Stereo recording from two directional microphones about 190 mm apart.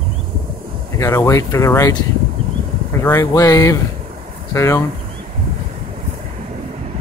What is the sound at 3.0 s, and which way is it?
Speech, 15° left (ahead or behind).